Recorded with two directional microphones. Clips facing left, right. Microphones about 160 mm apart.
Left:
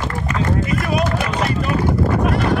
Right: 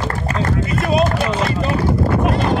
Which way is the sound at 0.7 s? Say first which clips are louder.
Right 3 dB; 30° right (ahead or behind).